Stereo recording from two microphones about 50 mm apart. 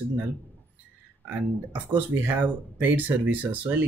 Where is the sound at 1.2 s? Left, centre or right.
Right.